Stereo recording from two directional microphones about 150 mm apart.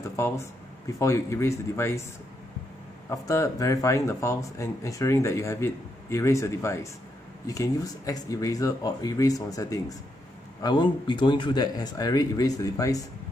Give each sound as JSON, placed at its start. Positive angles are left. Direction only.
{"t": 0.1, "sound": "speech", "side_deg": 20}
{"t": 3.1, "sound": "speech", "side_deg": 20}